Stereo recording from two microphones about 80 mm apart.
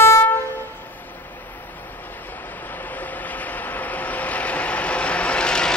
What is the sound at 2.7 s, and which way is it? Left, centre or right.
Vehicle, left.